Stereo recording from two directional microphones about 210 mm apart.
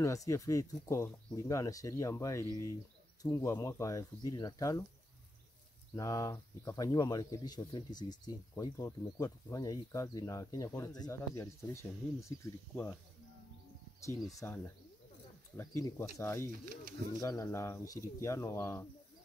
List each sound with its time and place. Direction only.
0.0 s speech: 15° left (ahead or behind)
5.9 s speech: 15° left (ahead or behind)
14.4 s speech: 10° left (ahead or behind)
16.6 s speech: 40° right (ahead or behind)
17.2 s speech: 15° left (ahead or behind)